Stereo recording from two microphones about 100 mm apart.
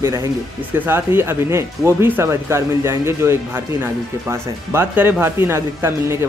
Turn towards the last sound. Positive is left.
turn(degrees=-25)  # may be behind; listen again after turning